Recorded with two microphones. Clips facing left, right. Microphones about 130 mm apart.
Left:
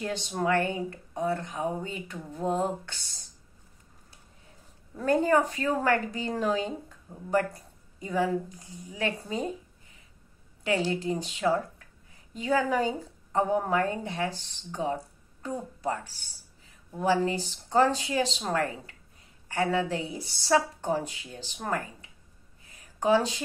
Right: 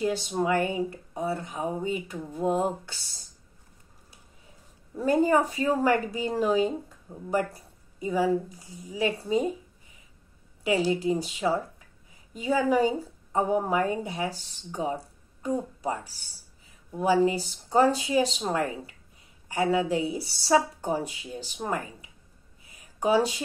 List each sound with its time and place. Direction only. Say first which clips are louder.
0.0 s a woman's voice: right 3 dB; 10° right (ahead or behind)
2.9 s speech: even; 40° right (ahead or behind)
4.9 s a woman's voice: right 1 dB; 10° right (ahead or behind)
10.6 s a woman's voice: right 3 dB; 10° right (ahead or behind)
22.7 s a sound: even; 10° right (ahead or behind)